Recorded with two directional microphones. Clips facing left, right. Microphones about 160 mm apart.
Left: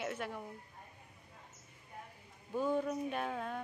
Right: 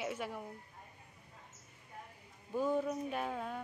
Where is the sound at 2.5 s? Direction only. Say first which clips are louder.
Even; 5° right (ahead or behind).